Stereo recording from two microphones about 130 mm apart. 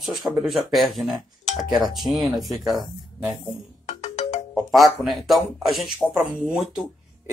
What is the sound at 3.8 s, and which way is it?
Ringtone, 60° left (ahead or behind).